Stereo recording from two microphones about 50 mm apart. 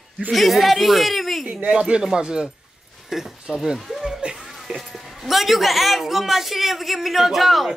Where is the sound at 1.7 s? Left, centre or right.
Centre.